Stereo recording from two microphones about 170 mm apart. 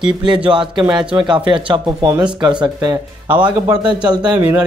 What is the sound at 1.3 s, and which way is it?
A man's voice, 30° right (ahead or behind).